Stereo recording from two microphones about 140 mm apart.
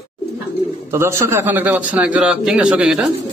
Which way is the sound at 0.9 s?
20° right (ahead or behind).